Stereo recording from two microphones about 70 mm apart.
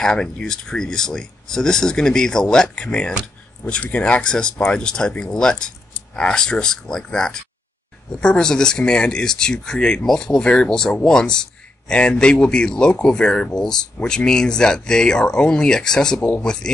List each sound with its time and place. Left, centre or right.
0.0 s speech: centre
16.2 s speech: left
16.4 s speech: centre